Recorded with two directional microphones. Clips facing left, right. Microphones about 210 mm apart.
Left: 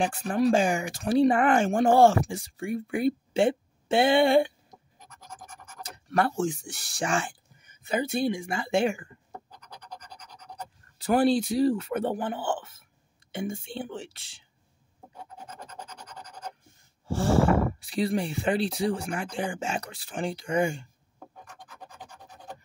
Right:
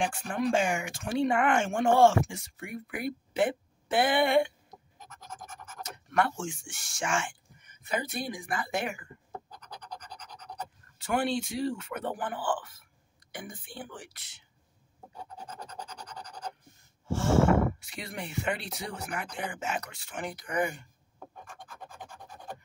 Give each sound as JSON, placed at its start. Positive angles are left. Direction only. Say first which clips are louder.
{"t": 0.0, "sound": "speech", "louder": "left 5 dB", "side_deg": 35}
{"t": 5.8, "sound": "speech", "louder": "left 2 dB", "side_deg": 35}
{"t": 11.0, "sound": "a woman's voice", "louder": "left 7 dB", "side_deg": 35}
{"t": 17.1, "sound": "speech", "louder": "left 1 dB", "side_deg": 35}
{"t": 21.5, "sound": "a sound", "louder": "right 1 dB", "side_deg": 20}